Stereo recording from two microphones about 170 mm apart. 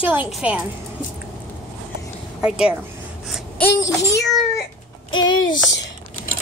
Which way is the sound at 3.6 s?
20° left (ahead or behind).